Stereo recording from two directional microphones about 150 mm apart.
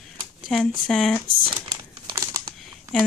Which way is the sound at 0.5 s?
5° left (ahead or behind).